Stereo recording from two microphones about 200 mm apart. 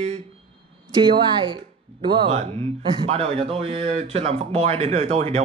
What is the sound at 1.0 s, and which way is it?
Speech, 25° right (ahead or behind).